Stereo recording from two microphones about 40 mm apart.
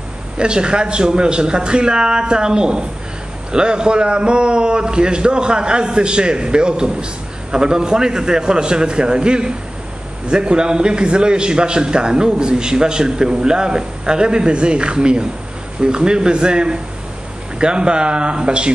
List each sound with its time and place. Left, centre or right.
0.4 s a man's voice: right